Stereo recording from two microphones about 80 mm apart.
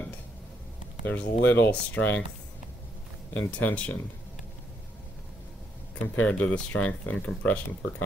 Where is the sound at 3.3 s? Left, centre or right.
Centre.